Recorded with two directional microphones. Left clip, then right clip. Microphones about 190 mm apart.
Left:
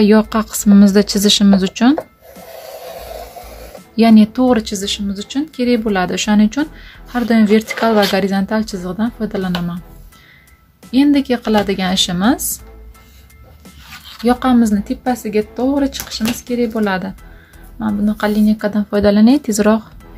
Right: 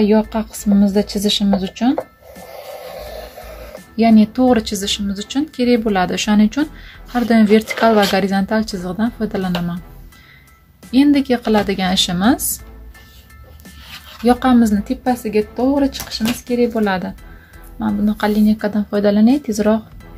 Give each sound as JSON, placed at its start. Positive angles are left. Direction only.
{"t": 0.0, "sound": "speech", "side_deg": 30}
{"t": 3.9, "sound": "speech", "side_deg": 20}
{"t": 10.9, "sound": "speech", "side_deg": 5}
{"t": 14.2, "sound": "speech", "side_deg": 5}